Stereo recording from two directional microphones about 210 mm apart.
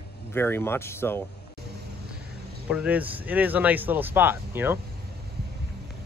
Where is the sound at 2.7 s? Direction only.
5° right (ahead or behind).